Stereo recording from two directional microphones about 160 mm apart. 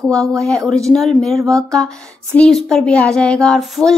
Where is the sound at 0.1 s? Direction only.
20° right (ahead or behind).